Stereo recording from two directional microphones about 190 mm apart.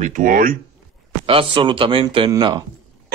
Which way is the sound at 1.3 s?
25° right (ahead or behind).